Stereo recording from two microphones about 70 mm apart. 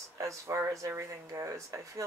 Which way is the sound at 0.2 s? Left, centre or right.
Right.